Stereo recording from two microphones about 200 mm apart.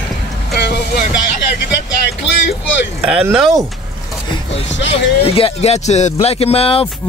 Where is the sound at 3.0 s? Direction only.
5° right (ahead or behind).